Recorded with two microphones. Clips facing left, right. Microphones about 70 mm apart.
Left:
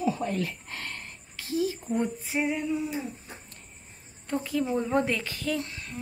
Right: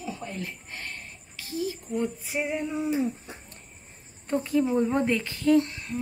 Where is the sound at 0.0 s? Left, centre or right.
Left.